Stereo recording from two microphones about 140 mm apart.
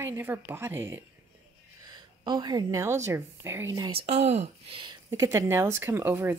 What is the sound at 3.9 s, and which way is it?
Speech, 50° right (ahead or behind).